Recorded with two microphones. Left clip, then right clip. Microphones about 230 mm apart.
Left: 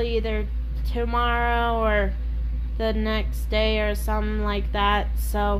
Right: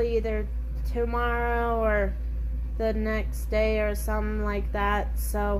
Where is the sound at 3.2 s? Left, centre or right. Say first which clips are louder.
Left 2 dB; left.